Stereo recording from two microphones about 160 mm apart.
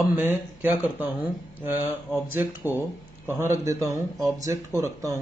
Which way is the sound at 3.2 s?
15° right (ahead or behind).